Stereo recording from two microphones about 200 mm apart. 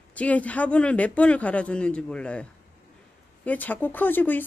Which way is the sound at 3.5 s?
10° left (ahead or behind).